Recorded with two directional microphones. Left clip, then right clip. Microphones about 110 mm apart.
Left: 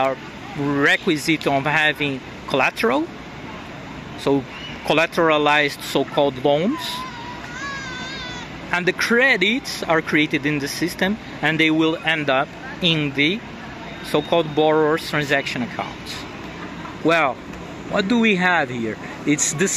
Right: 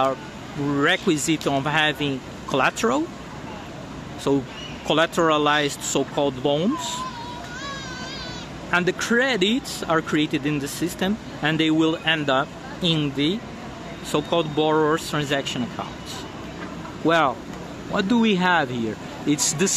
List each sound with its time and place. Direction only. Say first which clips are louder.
0.7 s speech: left 3 dB; 5° left (ahead or behind)
4.3 s speech: left 2 dB; 10° right (ahead or behind)
8.6 s speech: left 2 dB; centre (ahead or behind)
17.0 s speech: left 1 dB; 15° right (ahead or behind)
19.2 s speech: left 2 dB; centre (ahead or behind)